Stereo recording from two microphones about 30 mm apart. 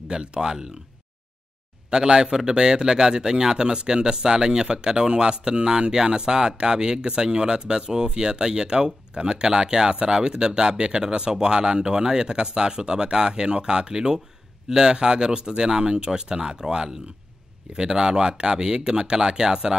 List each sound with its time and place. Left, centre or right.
0.1 s speech: right
1.9 s a man's voice: right